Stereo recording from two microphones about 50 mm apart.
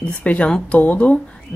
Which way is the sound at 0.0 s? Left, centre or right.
Left.